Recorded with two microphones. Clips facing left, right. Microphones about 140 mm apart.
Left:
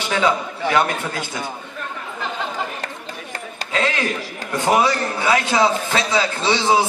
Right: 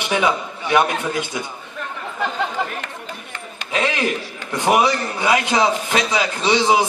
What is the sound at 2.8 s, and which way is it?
Run, 35° left (ahead or behind).